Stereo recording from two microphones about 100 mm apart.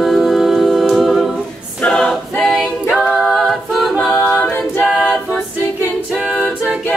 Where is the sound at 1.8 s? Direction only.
10° left (ahead or behind).